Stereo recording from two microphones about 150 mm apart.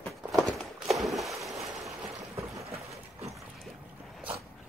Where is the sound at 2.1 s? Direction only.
20° right (ahead or behind).